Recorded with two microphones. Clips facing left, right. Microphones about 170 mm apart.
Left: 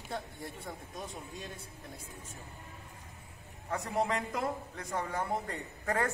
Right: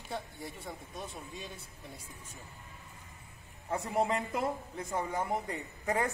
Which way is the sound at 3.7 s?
25° right (ahead or behind).